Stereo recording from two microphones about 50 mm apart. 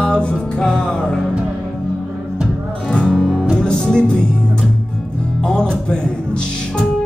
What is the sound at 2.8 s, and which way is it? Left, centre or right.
Music, centre.